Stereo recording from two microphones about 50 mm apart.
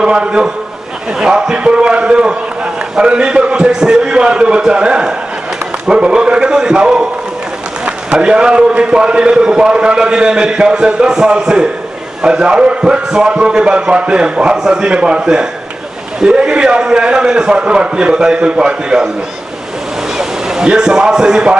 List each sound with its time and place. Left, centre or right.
0.0 s a man's voice: centre
20.2 s speech: centre